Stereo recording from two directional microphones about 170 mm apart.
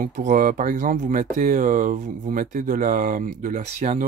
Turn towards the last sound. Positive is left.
turn(degrees=-45)  # may be behind; listen again after turning